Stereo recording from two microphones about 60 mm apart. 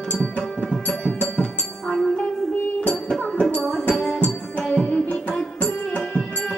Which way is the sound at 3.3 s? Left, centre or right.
Centre.